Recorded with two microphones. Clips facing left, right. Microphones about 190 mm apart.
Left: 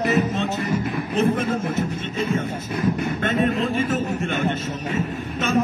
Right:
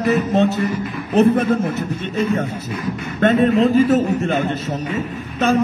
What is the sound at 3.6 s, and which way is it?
A man's voice, 40° right (ahead or behind).